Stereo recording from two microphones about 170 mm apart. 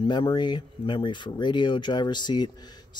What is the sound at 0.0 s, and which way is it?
Speech, 25° left (ahead or behind).